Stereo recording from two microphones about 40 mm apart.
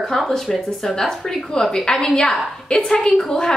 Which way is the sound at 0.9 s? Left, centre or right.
Centre.